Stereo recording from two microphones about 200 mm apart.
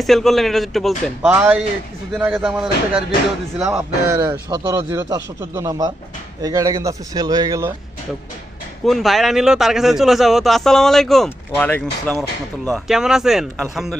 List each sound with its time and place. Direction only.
0.0 s a man's voice: centre (ahead or behind); by 7.7 s 15° right (ahead or behind)
8.8 s a man's voice: centre (ahead or behind)